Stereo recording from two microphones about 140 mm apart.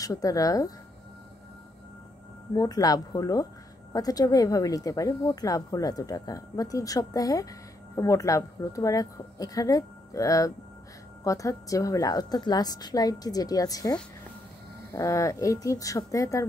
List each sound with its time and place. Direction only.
0.0 s speech: 25° left (ahead or behind)
2.5 s speech: 25° left (ahead or behind)